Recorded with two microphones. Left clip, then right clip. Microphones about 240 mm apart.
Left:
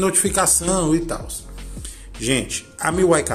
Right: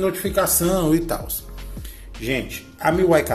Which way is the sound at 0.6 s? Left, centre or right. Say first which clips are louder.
Right 1 dB; centre.